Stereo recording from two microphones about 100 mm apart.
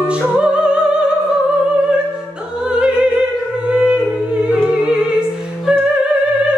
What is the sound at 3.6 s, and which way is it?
Music, 10° right (ahead or behind).